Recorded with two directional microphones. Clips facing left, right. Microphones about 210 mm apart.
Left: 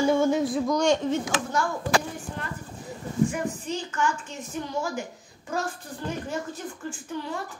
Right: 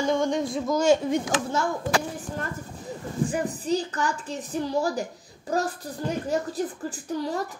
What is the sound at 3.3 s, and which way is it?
A woman's voice, 35° right (ahead or behind).